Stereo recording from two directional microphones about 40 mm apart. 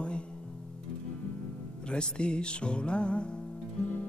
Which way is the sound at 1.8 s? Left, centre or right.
Left.